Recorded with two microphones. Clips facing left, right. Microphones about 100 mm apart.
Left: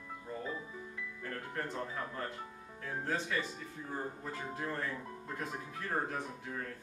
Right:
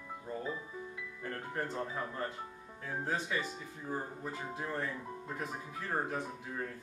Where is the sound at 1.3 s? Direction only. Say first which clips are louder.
Right 2 dB; 20° right (ahead or behind).